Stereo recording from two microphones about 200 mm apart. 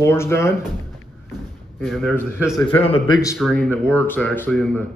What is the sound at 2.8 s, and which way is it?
Speech, 30° left (ahead or behind).